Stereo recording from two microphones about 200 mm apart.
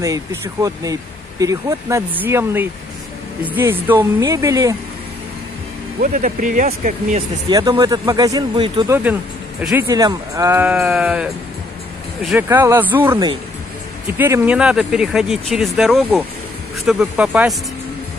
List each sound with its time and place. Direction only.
0.0 s speech: 15° right (ahead or behind)
5.9 s speech: 40° right (ahead or behind)
7.4 s speech: 20° right (ahead or behind)
8.8 s speech: 10° right (ahead or behind)
9.8 s speech: 15° right (ahead or behind); by 12.4 s centre (ahead or behind)
12.4 s speech: 10° right (ahead or behind)